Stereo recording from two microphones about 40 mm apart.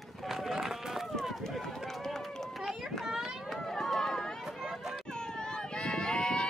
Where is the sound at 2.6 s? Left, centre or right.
Centre.